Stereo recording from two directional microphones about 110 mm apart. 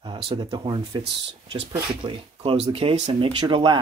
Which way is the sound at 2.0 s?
50° right (ahead or behind).